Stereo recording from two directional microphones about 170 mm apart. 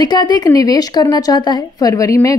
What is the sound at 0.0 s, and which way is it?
Speech, 25° left (ahead or behind).